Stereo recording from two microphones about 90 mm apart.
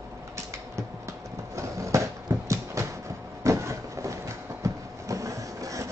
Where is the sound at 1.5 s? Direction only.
35° right (ahead or behind).